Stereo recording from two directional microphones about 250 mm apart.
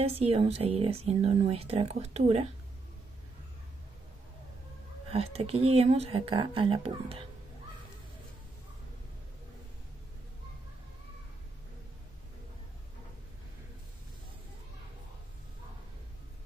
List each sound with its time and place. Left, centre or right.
0.0 s speech: right
5.1 s speech: right